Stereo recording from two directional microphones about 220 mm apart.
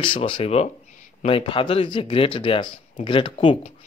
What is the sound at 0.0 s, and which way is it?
Speech, 20° left (ahead or behind).